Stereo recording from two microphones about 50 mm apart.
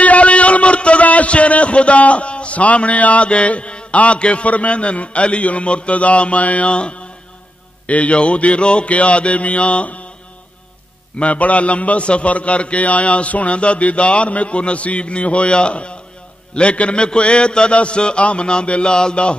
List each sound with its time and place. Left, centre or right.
0.0 s a man's voice: left
11.1 s a man's voice: left